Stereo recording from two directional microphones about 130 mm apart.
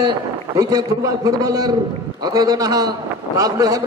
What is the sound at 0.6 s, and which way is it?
A man's voice, 30° right (ahead or behind).